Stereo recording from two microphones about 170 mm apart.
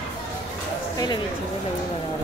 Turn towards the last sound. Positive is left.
turn(degrees=25)  # may be behind; listen again after turning